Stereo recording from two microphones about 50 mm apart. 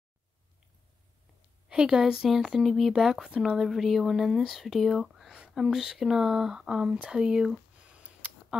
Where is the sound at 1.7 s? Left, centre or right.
Centre.